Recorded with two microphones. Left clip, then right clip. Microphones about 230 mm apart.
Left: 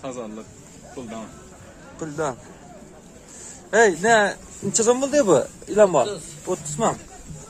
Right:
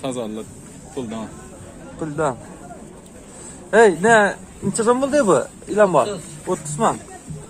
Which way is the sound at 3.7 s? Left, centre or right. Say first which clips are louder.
Right 4 dB; centre.